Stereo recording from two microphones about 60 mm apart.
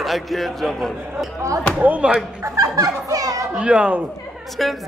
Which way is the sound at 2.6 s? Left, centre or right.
Right.